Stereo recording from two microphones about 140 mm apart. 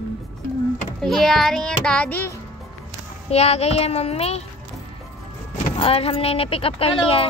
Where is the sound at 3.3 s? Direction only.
50° left (ahead or behind).